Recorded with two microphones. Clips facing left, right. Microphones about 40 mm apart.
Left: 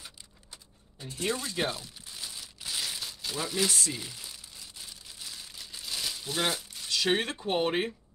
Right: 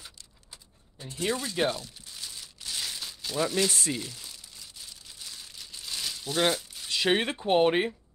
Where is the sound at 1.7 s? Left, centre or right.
Centre.